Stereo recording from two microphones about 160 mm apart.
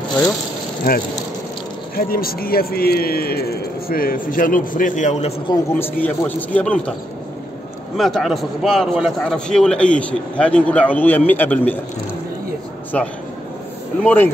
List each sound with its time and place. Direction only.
0.8 s a man's voice: 65° left (ahead or behind); by 5.3 s 50° left (ahead or behind)
5.5 s a man's voice: 10° left (ahead or behind)
8.0 s a man's voice: centre (ahead or behind)
12.9 s a man's voice: 5° left (ahead or behind)